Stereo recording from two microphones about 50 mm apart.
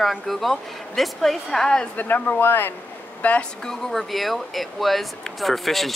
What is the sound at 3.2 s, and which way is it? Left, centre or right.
Speech, left.